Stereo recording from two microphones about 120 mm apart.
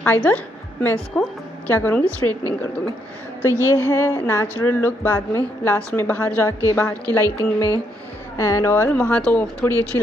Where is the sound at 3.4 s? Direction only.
20° left (ahead or behind).